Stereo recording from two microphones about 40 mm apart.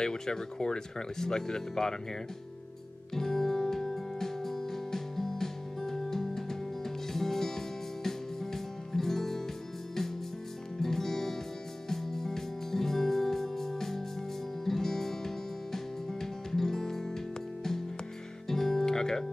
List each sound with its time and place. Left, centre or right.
0.0 s speech: centre
3.2 s music: centre
10.8 s music: centre
18.5 s music: centre